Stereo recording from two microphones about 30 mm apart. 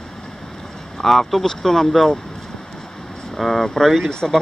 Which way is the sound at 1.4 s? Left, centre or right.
Centre.